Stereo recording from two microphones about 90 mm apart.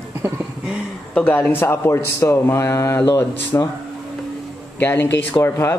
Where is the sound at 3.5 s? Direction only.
30° left (ahead or behind).